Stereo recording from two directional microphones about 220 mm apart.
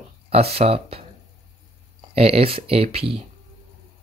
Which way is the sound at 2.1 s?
25° right (ahead or behind).